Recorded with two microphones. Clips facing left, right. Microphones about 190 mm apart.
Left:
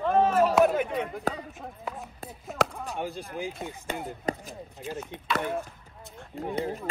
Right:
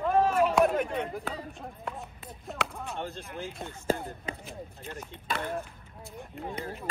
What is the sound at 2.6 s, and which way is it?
Speech, 40° left (ahead or behind).